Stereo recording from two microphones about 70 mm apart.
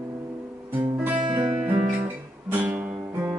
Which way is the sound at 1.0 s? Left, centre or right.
Right.